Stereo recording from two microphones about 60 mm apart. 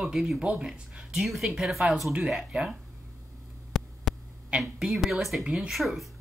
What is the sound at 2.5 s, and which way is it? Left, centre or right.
Speech, centre.